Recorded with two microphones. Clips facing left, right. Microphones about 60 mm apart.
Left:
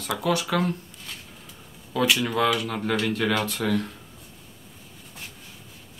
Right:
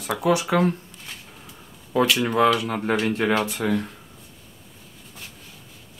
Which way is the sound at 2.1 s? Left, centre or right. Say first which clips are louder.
Right 4 dB; right.